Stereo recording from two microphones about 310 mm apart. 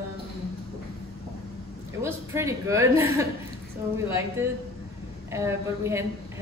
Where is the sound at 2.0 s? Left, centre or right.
Centre.